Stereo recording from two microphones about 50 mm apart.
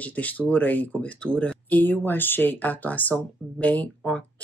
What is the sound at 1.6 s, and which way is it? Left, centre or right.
Speech, left.